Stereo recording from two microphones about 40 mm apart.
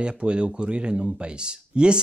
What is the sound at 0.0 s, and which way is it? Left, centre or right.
Speech, right.